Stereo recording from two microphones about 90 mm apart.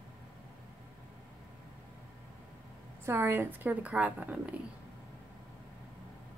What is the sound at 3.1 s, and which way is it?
A woman's voice, 25° right (ahead or behind).